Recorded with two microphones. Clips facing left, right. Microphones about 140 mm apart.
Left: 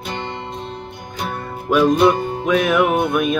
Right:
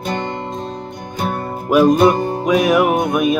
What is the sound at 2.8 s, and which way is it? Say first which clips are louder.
Music: right 1 dB; 40° right (ahead or behind).